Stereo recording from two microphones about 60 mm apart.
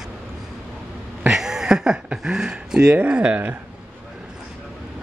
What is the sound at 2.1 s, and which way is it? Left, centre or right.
Speech, centre.